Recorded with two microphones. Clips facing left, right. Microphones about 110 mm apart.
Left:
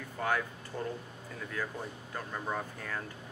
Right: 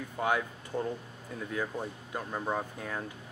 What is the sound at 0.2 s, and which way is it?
Speech, 15° right (ahead or behind).